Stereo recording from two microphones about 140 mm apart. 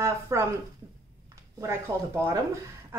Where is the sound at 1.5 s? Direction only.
20° right (ahead or behind).